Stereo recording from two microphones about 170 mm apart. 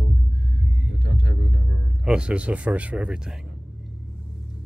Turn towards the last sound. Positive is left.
turn(degrees=-5)  # may be behind; listen again after turning